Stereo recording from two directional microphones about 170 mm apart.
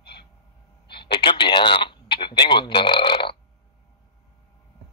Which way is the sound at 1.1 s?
30° left (ahead or behind).